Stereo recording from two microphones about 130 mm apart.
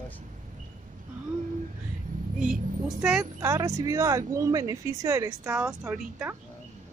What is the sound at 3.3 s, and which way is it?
Speech, 25° right (ahead or behind).